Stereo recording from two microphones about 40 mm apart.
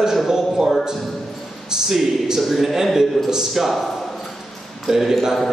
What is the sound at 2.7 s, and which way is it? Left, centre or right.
Speech, centre.